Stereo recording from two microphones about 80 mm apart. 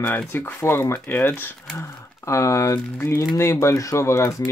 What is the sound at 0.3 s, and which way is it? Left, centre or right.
Speech, left.